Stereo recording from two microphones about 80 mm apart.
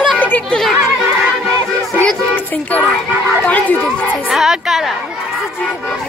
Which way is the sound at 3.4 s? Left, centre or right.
Centre.